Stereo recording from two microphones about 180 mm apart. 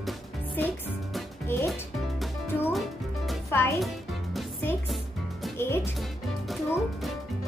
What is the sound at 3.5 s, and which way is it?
Music, 10° left (ahead or behind).